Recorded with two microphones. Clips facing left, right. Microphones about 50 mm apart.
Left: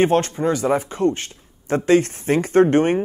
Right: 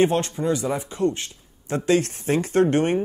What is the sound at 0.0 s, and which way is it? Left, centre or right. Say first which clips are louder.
Speech: left 3 dB; left.